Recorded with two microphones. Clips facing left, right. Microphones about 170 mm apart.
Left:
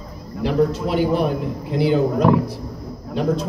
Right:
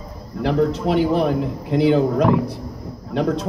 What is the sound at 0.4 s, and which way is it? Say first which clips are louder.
Speech: even; 65° right (ahead or behind).